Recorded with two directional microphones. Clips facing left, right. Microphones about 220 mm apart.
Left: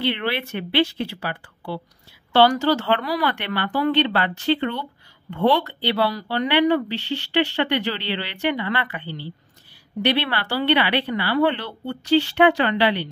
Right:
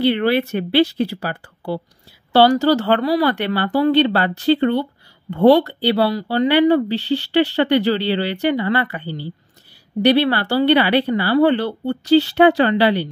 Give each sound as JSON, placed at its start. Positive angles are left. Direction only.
{"t": 0.0, "sound": "speech", "side_deg": -40}